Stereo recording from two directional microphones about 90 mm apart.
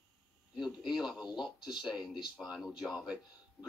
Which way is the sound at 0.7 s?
5° right (ahead or behind).